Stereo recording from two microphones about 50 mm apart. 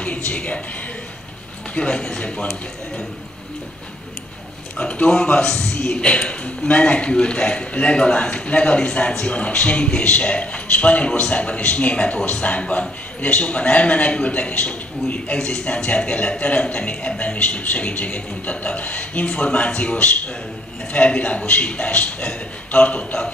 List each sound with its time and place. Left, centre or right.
0.0 s a woman's voice: left
1.8 s speech: centre
4.7 s a man's voice: left